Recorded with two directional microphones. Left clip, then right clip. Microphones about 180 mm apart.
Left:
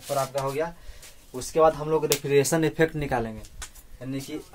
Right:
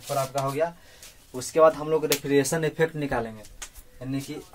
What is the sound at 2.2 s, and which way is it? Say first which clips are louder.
Speech: left 2 dB; 40° left (ahead or behind).